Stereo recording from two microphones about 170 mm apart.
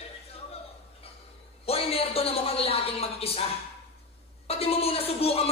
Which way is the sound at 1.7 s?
35° left (ahead or behind).